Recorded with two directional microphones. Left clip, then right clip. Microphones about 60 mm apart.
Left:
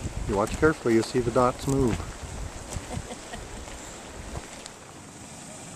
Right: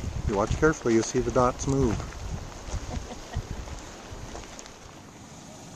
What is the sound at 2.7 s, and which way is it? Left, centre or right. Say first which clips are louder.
Boat: left 2 dB; left.